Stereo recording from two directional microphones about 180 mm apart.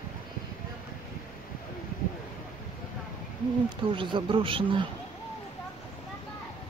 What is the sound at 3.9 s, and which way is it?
Speech, 25° right (ahead or behind).